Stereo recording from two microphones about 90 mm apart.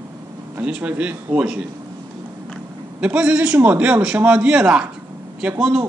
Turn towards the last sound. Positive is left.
turn(degrees=-5)  # may be behind; listen again after turning